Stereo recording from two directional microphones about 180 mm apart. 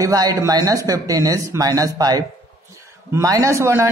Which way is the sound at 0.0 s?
20° right (ahead or behind).